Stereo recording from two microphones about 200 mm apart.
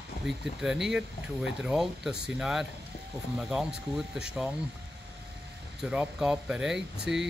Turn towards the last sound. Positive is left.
turn(degrees=-60)  # may be behind; listen again after turning